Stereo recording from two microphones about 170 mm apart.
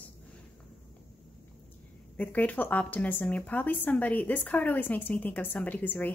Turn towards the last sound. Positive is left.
turn(degrees=10)  # may be behind; listen again after turning